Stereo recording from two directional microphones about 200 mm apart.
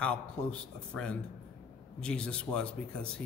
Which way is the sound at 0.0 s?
5° left (ahead or behind).